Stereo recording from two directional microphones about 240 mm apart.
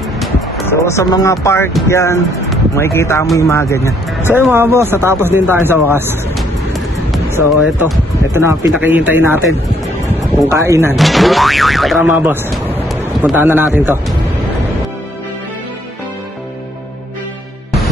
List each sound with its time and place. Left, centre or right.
0.2 s speech: centre
4.2 s speech: centre
10.5 s speech: centre
11.0 s speech: centre